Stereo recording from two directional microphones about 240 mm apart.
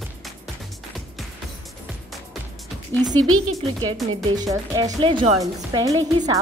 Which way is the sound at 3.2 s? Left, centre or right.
Right.